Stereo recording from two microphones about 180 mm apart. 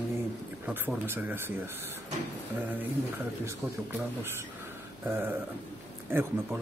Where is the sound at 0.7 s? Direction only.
10° right (ahead or behind).